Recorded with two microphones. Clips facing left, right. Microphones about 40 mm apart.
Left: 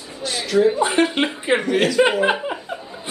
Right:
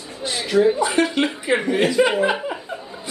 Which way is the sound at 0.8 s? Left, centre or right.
Left.